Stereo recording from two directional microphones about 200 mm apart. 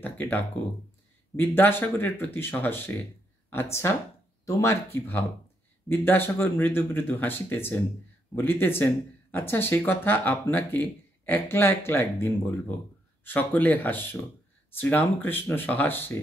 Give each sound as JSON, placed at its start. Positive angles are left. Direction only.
{"t": 0.0, "sound": "speech", "side_deg": 10}
{"t": 5.9, "sound": "speech", "side_deg": 10}